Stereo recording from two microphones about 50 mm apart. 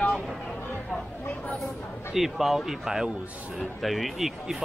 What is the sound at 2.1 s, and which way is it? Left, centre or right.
Speech, centre.